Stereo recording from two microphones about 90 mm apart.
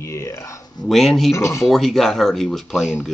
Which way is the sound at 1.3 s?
35° left (ahead or behind).